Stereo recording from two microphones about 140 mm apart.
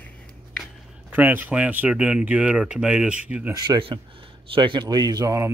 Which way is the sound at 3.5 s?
35° right (ahead or behind).